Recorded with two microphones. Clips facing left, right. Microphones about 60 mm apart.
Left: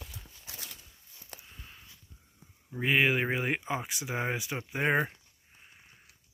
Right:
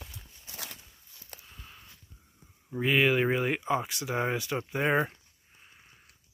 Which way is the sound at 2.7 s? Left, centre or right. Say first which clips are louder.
Right 2 dB; centre.